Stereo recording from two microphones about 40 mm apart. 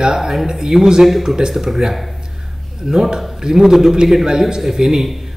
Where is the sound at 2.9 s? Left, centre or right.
Centre.